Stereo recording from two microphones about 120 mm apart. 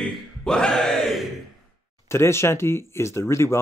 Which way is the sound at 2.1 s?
20° left (ahead or behind).